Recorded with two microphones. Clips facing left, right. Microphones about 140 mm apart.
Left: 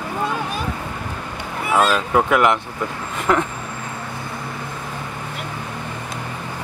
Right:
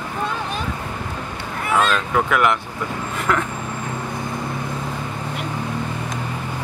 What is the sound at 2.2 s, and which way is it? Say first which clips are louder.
Speech: left 3 dB; 20° left (ahead or behind).